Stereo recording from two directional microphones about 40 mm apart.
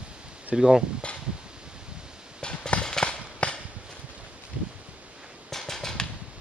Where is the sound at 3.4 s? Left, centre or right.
Left.